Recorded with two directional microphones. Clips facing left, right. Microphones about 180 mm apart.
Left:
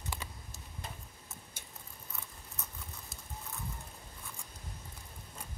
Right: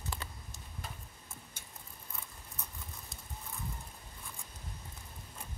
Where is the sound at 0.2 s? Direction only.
10° left (ahead or behind).